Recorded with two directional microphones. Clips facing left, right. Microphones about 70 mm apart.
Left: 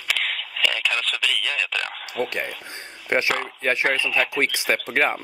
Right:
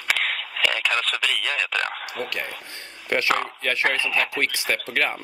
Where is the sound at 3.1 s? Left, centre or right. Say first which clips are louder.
Even; left.